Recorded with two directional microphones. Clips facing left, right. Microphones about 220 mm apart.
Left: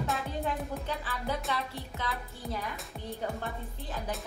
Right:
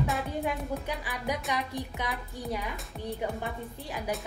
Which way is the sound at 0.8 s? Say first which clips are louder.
Right 1 dB; 15° right (ahead or behind).